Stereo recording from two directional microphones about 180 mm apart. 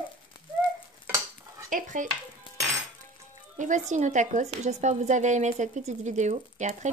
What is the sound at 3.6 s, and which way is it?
A woman's voice, 45° right (ahead or behind).